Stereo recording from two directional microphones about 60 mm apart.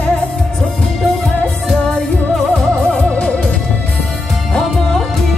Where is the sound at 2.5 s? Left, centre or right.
Left.